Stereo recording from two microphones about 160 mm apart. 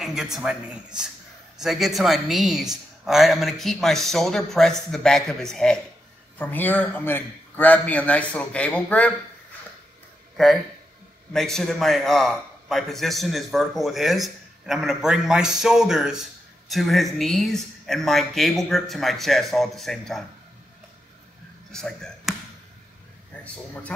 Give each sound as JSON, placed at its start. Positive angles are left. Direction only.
{"t": 0.0, "sound": "a man's voice", "side_deg": 0}
{"t": 10.3, "sound": "a man's voice", "side_deg": 0}
{"t": 21.7, "sound": "a man's voice", "side_deg": 5}
{"t": 23.4, "sound": "a man's voice", "side_deg": 10}